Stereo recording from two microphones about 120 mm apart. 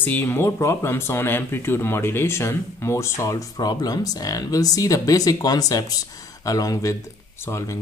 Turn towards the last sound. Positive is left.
turn(degrees=25)  # may be behind; listen again after turning